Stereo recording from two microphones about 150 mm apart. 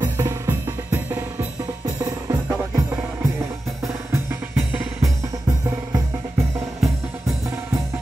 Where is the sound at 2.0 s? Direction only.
25° right (ahead or behind).